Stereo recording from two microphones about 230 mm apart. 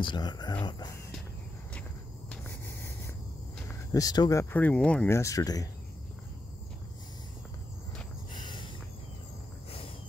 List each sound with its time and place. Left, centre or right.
0.0 s speech: centre
3.9 s speech: centre
8.4 s a sound: centre